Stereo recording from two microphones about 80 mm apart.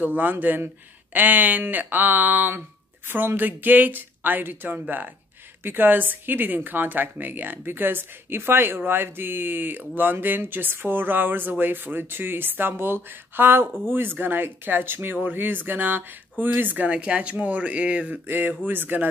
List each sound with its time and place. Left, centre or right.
0.0 s speech: right